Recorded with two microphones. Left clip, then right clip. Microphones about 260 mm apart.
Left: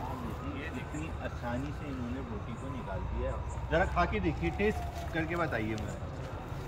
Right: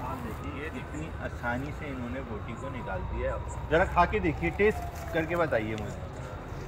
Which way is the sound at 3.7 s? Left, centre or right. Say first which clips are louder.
Right 5 dB; centre.